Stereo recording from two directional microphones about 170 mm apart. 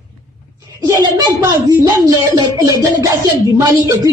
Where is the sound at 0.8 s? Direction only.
20° right (ahead or behind).